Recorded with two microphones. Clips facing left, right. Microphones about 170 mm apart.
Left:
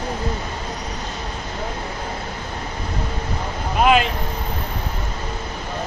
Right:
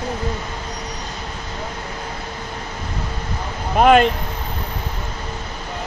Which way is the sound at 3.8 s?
50° right (ahead or behind).